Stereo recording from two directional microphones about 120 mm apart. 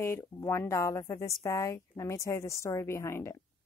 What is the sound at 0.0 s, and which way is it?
Speech, 25° left (ahead or behind).